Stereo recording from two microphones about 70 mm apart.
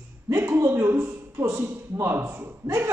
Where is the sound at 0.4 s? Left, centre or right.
Right.